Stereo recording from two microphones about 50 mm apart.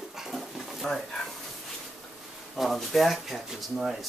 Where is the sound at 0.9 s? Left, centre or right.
Centre.